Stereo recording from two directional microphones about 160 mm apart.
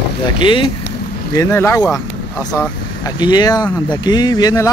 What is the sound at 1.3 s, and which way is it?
Speech, 20° left (ahead or behind).